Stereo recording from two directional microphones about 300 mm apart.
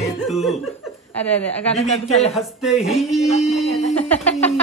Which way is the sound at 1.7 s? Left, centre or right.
Left.